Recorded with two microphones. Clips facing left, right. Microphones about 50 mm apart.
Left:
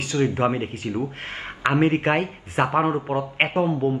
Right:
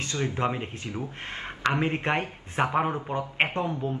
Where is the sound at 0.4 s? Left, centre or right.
Centre.